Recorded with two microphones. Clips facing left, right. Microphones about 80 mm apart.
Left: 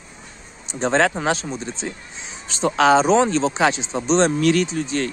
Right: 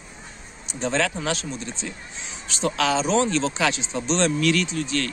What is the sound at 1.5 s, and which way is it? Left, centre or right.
Speech, left.